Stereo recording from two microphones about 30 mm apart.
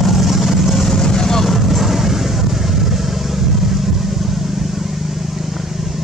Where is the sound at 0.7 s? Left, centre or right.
Centre.